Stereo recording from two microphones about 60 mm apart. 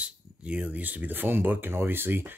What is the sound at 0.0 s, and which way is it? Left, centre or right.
Speech, right.